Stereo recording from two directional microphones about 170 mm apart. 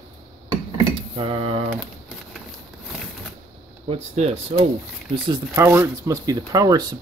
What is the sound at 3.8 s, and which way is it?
Speech, 40° right (ahead or behind).